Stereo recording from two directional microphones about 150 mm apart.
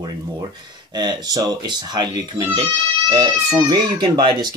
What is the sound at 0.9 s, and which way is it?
Speech, 30° right (ahead or behind).